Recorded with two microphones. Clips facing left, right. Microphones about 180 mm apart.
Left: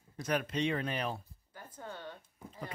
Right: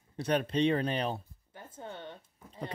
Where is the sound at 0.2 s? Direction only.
30° right (ahead or behind).